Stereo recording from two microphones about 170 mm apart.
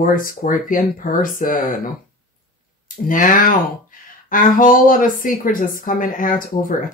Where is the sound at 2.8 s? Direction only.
50° left (ahead or behind).